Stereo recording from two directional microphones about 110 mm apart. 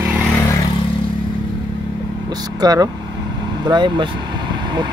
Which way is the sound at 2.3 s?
35° right (ahead or behind).